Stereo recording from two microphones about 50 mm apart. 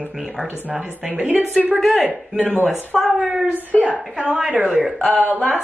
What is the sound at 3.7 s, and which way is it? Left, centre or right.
Speech, left.